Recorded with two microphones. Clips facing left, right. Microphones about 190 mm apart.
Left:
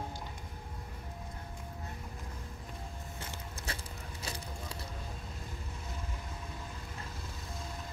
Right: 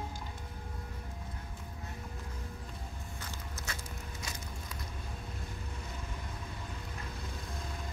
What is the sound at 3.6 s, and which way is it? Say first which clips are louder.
Keys jangling: left 2 dB; 30° left (ahead or behind).